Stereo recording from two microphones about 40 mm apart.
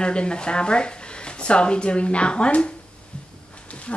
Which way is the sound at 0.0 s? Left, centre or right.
Left.